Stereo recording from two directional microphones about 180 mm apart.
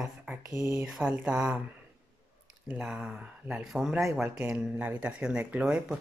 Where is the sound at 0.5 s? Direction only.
15° right (ahead or behind).